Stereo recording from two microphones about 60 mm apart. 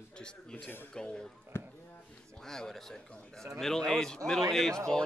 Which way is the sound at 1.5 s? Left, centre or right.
Left.